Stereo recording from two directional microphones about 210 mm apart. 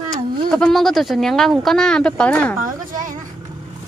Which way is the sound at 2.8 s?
40° right (ahead or behind).